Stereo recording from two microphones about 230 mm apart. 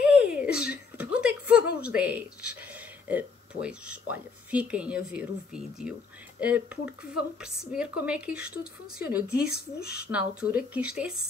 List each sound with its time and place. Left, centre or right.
0.0 s a sound: centre
3.1 s speech: centre
9.5 s speech: left
10.1 s speech: centre